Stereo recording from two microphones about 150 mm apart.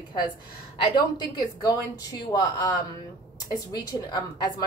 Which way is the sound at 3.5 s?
25° left (ahead or behind).